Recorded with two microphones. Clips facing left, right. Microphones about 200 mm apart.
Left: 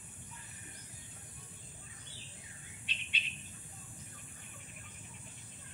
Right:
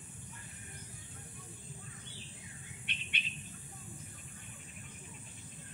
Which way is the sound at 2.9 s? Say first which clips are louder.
Right 2 dB; 60° right (ahead or behind).